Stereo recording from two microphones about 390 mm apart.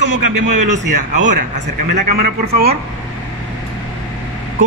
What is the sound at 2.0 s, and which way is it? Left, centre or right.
Speech, right.